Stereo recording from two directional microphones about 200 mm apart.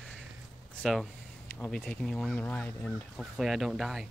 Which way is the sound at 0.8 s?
Centre (ahead or behind).